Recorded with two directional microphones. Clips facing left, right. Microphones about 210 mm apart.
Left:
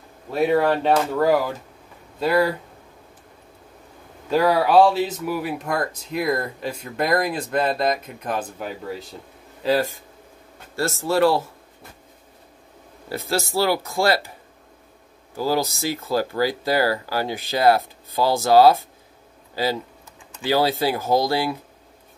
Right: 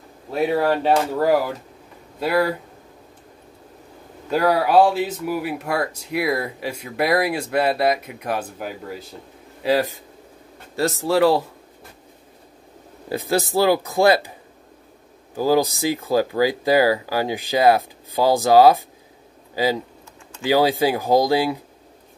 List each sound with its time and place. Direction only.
0.3 s speech: 5° right (ahead or behind)
4.8 s speech: 5° right (ahead or behind)
13.1 s speech: 15° right (ahead or behind)
15.3 s speech: 15° right (ahead or behind)